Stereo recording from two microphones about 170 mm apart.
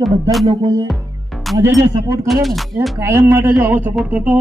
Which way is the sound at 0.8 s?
Centre (ahead or behind).